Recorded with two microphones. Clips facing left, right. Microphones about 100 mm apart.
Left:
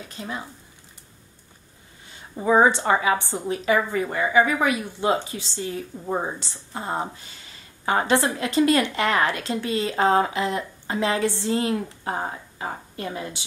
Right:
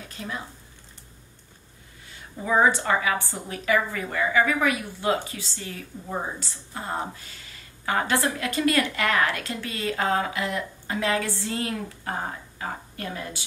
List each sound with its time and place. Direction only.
0.2 s a woman's voice: 20° left (ahead or behind)
2.4 s a woman's voice: 25° left (ahead or behind)